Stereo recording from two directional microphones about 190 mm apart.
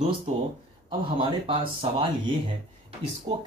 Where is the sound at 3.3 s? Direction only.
30° right (ahead or behind).